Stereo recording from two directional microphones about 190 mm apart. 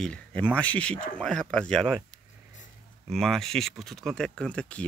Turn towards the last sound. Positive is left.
turn(degrees=5)  # may be behind; listen again after turning